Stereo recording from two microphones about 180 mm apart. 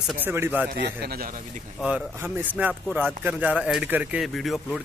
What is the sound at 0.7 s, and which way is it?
Speech, 60° right (ahead or behind).